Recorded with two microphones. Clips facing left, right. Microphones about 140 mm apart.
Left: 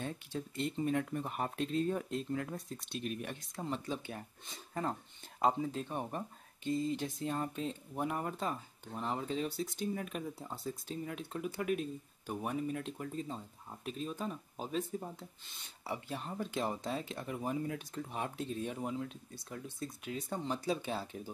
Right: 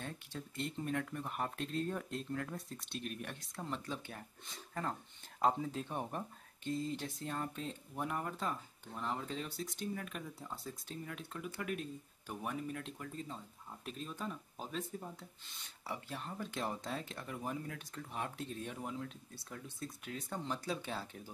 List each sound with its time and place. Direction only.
0.0 s speech: 5° left (ahead or behind)
1.0 s speech: 20° left (ahead or behind)
5.4 s speech: 5° left (ahead or behind)